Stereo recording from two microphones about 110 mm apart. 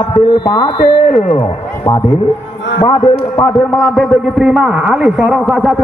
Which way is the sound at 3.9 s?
Centre (ahead or behind).